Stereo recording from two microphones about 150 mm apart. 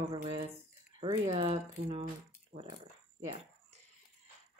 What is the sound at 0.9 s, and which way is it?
Speech, 35° right (ahead or behind).